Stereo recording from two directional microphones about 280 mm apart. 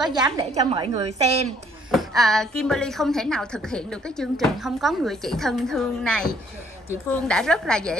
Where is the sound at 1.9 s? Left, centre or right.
Centre.